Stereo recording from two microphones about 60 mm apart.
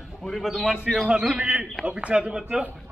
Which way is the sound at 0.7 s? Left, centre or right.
Centre.